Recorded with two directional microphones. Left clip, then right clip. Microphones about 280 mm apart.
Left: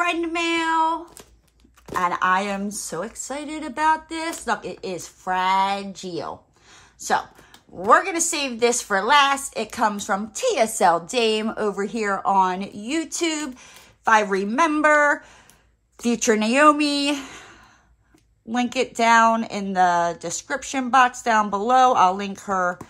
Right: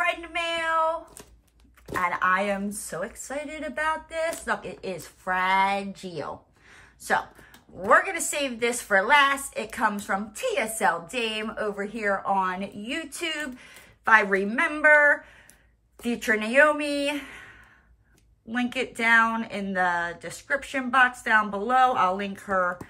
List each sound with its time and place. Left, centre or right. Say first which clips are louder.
1.9 s a woman's voice: left 3 dB; centre
16.0 s a woman's voice: left 5 dB; centre